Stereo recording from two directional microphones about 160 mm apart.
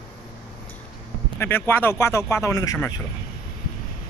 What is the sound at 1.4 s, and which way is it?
Speech, 15° left (ahead or behind).